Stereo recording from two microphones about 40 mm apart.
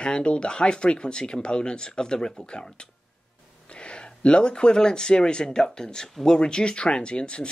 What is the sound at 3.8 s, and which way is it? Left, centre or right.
Speech, left.